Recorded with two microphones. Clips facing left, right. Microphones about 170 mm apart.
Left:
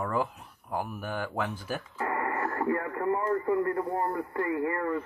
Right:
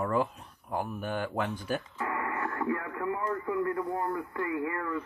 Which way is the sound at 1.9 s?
45° left (ahead or behind).